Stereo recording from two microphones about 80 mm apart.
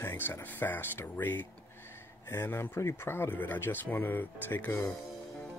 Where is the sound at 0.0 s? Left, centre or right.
Left.